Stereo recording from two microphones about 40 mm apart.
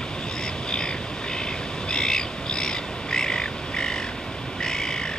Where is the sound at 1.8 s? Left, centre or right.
Centre.